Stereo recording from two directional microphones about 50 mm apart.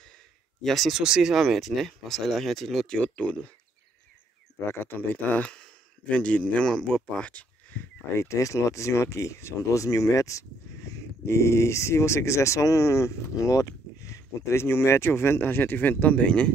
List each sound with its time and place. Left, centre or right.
0.6 s speech: centre
1.0 s speech: centre
1.3 s speech: centre
2.9 s speech: left
4.8 s speech: left
5.4 s speech: left
8.2 s speech: left
11.2 s speech: left